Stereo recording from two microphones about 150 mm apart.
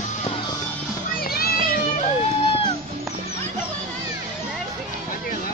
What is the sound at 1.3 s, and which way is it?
Children playing, 80° left.